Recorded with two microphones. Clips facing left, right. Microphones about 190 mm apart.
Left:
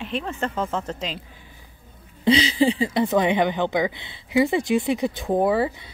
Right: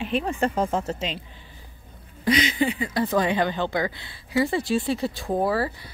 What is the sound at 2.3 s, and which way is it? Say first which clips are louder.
A woman's voice: left 4 dB; 30° left (ahead or behind).